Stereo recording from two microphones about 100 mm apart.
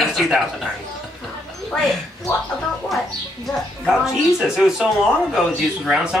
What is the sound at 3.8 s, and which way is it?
Speech, 5° right (ahead or behind).